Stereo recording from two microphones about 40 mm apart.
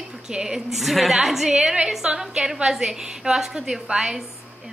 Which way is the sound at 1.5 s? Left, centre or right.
Centre.